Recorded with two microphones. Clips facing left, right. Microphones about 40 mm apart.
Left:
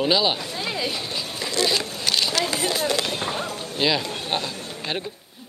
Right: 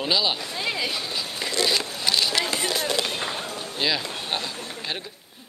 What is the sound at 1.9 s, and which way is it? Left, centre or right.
Vehicle, centre.